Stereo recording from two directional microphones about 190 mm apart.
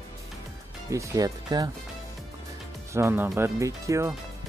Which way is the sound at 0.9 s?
15° right (ahead or behind).